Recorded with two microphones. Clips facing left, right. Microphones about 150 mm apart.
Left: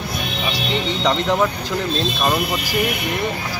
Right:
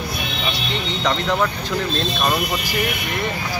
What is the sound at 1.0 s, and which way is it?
Speech, 15° left (ahead or behind).